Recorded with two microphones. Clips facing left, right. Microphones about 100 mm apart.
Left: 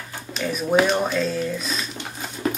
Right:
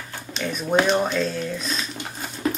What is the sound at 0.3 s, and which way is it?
Speech, centre (ahead or behind).